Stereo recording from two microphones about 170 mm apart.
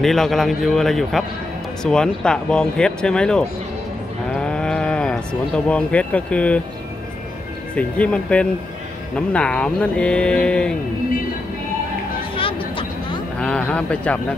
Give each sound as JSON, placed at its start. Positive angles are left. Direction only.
{"t": 0.0, "sound": "speech", "side_deg": 0}
{"t": 4.3, "sound": "livestock", "side_deg": 5}
{"t": 5.7, "sound": "speech", "side_deg": 5}
{"t": 7.7, "sound": "speech", "side_deg": 5}
{"t": 12.4, "sound": "vehicle", "side_deg": 30}
{"t": 13.4, "sound": "speech", "side_deg": 5}